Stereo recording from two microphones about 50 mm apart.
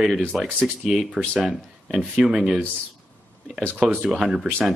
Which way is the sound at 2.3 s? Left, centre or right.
Centre.